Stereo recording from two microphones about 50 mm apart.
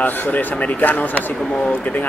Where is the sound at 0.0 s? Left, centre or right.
Left.